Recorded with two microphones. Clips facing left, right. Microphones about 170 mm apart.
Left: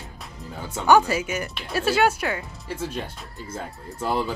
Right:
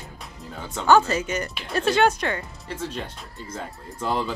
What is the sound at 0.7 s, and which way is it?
Speech, 15° left (ahead or behind).